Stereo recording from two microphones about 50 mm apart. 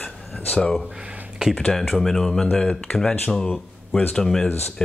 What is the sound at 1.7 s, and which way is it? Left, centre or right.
Speech, centre.